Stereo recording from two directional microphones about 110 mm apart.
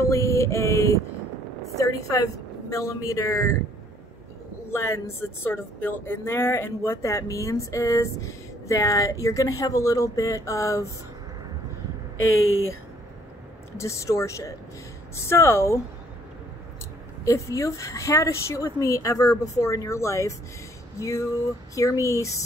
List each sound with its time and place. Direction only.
0.0 s a sound: 25° left (ahead or behind)
1.8 s speech: 30° left (ahead or behind)
4.6 s speech: 25° left (ahead or behind)
13.7 s speech: 25° left (ahead or behind)
17.2 s speech: 30° left (ahead or behind)